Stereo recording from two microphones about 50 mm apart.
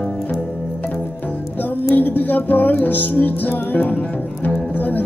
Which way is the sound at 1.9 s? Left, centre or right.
Left.